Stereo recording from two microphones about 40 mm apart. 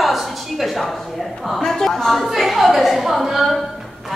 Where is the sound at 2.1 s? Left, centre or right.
Centre.